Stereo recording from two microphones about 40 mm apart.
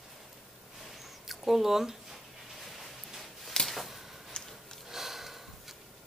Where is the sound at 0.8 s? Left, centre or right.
Centre.